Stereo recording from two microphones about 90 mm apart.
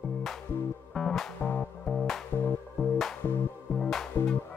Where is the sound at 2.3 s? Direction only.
20° left (ahead or behind).